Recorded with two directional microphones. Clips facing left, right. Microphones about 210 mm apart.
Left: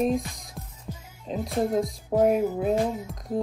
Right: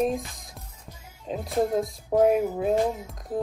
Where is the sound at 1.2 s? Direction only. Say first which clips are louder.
Right 1 dB; centre (ahead or behind).